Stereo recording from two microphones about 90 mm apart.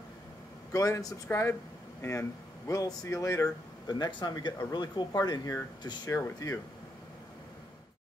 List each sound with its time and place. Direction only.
0.7 s speech: 35° left (ahead or behind)